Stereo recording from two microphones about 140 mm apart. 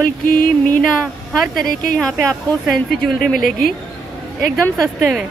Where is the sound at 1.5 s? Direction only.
85° left.